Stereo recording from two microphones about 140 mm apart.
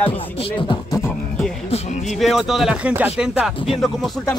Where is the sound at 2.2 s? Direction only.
Centre (ahead or behind).